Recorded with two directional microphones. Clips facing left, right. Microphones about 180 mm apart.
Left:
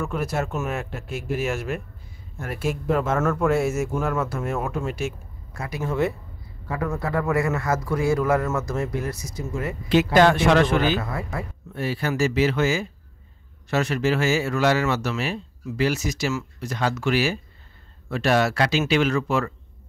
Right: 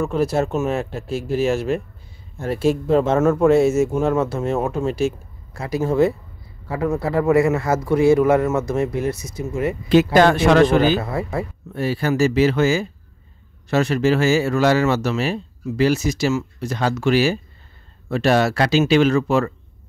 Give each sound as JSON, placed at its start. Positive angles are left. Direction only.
{"t": 0.0, "sound": "speech", "side_deg": -30}
{"t": 9.8, "sound": "speech", "side_deg": -40}